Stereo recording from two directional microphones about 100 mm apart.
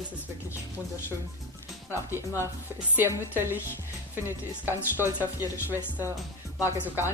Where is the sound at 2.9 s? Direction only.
20° right (ahead or behind).